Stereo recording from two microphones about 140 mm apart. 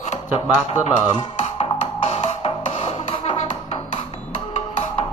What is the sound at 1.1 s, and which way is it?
Music, 40° left (ahead or behind).